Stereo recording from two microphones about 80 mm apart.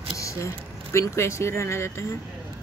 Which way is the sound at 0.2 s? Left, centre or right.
Left.